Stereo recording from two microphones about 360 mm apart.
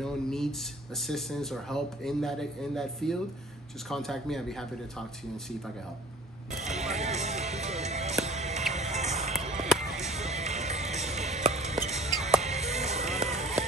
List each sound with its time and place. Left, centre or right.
0.0 s a man's voice: centre
6.5 s music: centre
9.7 s music: centre
10.0 s music: centre